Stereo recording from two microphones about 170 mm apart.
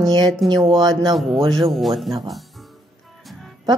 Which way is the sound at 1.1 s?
Centre (ahead or behind).